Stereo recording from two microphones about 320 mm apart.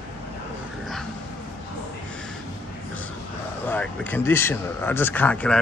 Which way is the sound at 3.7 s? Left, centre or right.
Centre.